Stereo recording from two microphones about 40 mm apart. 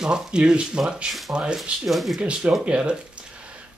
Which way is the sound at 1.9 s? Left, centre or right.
Centre.